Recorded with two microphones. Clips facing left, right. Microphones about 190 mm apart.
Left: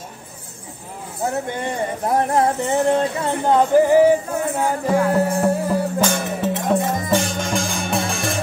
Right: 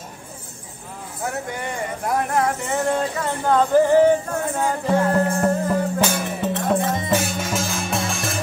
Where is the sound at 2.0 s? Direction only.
30° left (ahead or behind).